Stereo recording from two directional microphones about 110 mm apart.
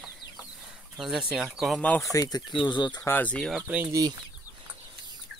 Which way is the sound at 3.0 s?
15° left (ahead or behind).